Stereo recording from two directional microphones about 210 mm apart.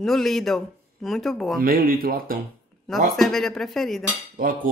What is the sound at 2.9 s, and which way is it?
Speech, centre (ahead or behind).